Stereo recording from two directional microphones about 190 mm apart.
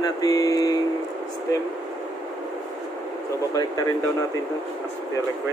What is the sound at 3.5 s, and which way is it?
Speech, 20° left (ahead or behind).